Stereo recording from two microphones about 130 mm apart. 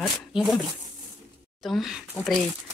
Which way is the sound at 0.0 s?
Centre (ahead or behind).